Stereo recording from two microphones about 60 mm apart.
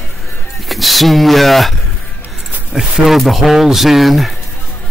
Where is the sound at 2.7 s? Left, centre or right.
Centre.